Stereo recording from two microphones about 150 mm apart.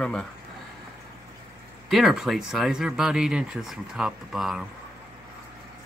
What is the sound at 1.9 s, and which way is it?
Speech, centre (ahead or behind).